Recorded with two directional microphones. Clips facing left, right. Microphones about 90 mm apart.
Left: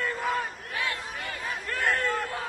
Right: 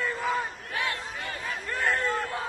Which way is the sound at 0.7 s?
25° right (ahead or behind).